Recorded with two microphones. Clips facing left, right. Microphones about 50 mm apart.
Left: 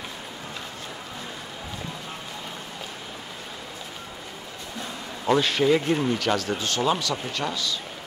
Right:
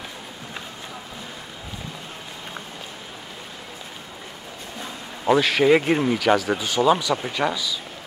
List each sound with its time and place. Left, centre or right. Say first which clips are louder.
5.2 s a man's voice: right 3 dB; centre
5.6 s speech: right 4 dB; right
6.0 s speech: right 5 dB; centre